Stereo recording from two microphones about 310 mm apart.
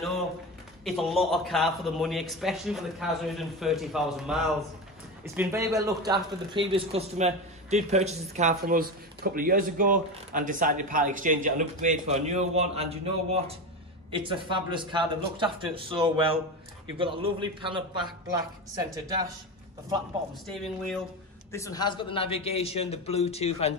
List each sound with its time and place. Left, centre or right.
0.8 s a man's voice: centre
20.4 s a man's voice: centre